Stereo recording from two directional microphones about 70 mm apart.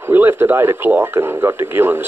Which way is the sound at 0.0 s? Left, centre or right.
Right.